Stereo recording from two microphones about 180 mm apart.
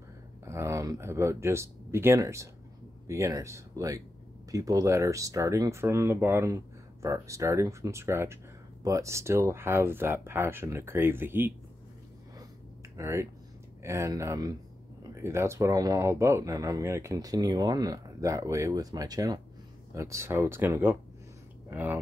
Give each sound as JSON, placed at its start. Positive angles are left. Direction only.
{"t": 0.5, "sound": "speech", "side_deg": -15}
{"t": 12.9, "sound": "speech", "side_deg": -15}